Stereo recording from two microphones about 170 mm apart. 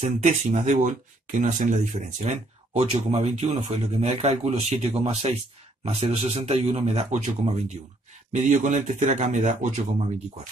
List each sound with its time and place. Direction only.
0.0 s speech: 45° right (ahead or behind)